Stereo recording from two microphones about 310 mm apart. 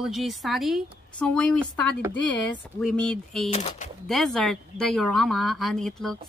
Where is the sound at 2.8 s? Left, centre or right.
Centre.